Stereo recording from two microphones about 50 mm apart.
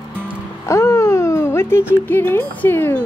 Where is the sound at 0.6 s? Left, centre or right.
Left.